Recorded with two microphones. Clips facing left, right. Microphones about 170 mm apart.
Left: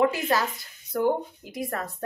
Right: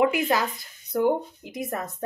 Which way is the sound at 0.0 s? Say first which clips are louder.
Right 1 dB; 15° right (ahead or behind).